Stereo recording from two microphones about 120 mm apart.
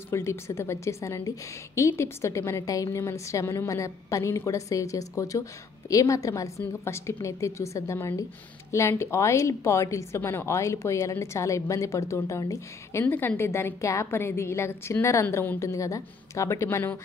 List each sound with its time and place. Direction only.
0.1 s a woman's voice: 25° left (ahead or behind)
13.0 s a woman's voice: 15° left (ahead or behind)